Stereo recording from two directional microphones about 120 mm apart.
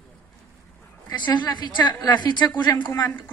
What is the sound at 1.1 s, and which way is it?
A woman's voice, 40° left (ahead or behind).